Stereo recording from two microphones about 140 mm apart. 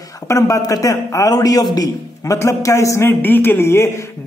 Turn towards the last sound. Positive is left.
turn(degrees=20)  # may be behind; listen again after turning